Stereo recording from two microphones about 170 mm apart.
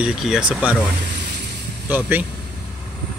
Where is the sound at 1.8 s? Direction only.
10° right (ahead or behind).